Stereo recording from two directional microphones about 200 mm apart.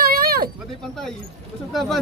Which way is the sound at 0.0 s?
50° right (ahead or behind).